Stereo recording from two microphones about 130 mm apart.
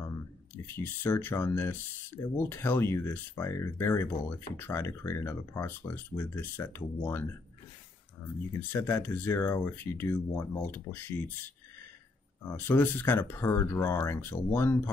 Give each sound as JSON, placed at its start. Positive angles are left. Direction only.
{"t": 0.7, "sound": "speech", "side_deg": 15}
{"t": 8.7, "sound": "speech", "side_deg": 15}